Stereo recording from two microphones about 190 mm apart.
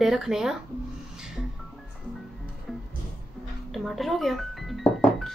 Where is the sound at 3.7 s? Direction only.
Centre (ahead or behind).